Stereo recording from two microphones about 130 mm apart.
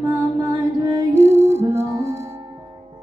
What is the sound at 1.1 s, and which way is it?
Music, 60° right (ahead or behind).